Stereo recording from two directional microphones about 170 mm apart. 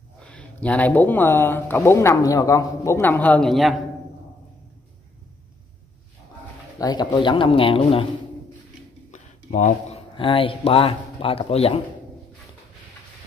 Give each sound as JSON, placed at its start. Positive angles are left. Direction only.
{"t": 0.2, "sound": "speech", "side_deg": 5}
{"t": 6.8, "sound": "speech", "side_deg": 20}
{"t": 9.1, "sound": "speech", "side_deg": 45}